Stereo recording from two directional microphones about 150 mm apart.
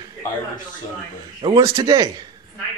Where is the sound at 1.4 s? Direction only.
25° right (ahead or behind).